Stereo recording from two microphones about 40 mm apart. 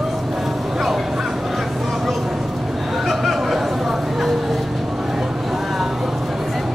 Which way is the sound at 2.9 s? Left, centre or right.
Centre.